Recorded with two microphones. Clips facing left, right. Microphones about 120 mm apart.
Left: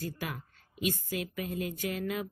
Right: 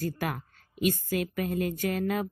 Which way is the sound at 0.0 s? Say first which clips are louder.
Right 6 dB; 55° right (ahead or behind).